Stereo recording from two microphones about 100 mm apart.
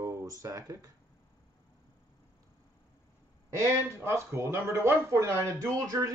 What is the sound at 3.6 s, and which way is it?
A man's voice, 30° right (ahead or behind).